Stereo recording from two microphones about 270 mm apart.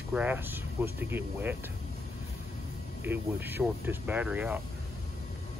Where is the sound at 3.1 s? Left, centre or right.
Centre.